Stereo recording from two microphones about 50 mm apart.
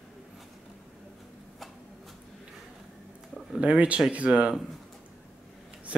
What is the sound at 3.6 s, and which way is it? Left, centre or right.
Speech, right.